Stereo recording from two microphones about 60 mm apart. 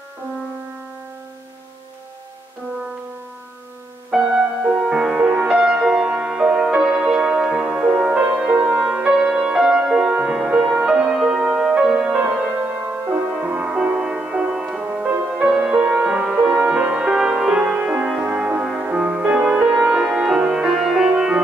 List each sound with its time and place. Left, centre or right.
4.1 s music: centre
15.0 s music: right; by 21.1 s centre